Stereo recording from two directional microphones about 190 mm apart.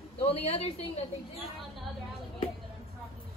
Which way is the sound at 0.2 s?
35° left (ahead or behind).